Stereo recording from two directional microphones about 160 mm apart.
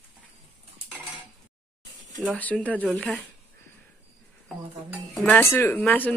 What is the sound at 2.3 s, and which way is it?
Speech, 10° left (ahead or behind).